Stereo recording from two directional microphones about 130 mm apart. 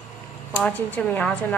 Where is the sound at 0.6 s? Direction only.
15° left (ahead or behind).